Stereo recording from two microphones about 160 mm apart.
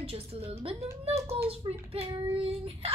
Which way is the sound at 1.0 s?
40° right (ahead or behind).